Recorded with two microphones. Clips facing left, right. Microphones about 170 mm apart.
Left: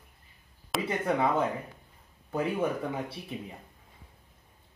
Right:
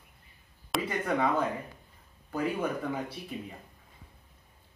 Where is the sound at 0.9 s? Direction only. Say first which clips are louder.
Left 2 dB; 25° left (ahead or behind).